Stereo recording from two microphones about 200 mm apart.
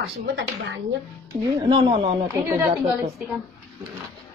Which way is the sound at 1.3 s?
20° right (ahead or behind).